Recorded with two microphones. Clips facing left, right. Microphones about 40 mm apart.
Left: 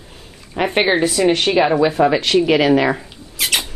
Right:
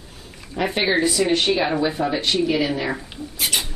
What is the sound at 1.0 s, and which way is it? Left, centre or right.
Speech, left.